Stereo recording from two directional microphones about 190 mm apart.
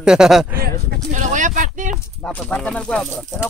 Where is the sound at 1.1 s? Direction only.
40° right (ahead or behind).